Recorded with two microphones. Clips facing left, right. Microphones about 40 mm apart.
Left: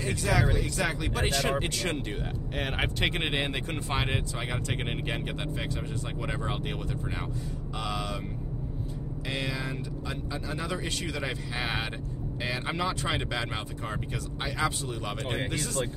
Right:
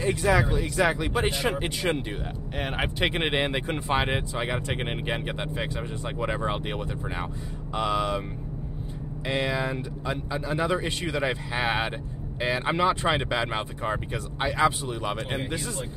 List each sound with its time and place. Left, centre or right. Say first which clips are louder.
0.0 s speech: right 5 dB; right
2.5 s speech: right 2 dB; centre
3.1 s speech: right 4 dB; centre
9.3 s speech: right 7 dB; right